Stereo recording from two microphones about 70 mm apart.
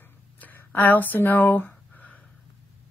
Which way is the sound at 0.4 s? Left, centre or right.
Left.